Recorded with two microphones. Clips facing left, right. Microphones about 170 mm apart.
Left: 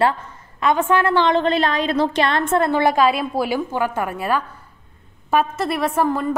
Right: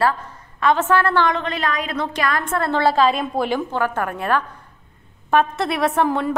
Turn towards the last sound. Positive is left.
turn(degrees=0)  # may be behind; listen again after turning